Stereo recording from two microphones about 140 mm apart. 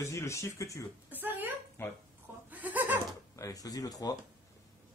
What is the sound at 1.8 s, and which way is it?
Speech, 15° left (ahead or behind).